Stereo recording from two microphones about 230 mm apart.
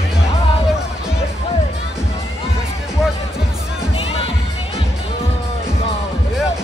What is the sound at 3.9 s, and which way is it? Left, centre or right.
Music, left.